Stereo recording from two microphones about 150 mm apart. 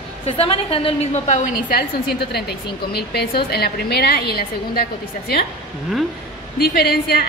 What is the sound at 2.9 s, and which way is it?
A woman's voice, 90° left.